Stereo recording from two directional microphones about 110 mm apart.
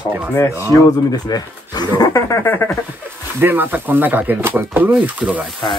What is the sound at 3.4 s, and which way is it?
Speech, 20° right (ahead or behind).